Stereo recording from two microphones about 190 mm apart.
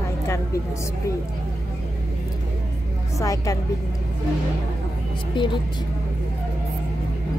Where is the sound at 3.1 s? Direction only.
15° left (ahead or behind).